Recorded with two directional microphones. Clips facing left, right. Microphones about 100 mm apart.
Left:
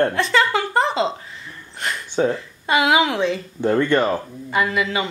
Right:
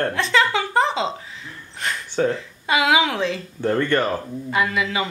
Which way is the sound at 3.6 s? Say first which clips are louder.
Left 2 dB; 15° left (ahead or behind).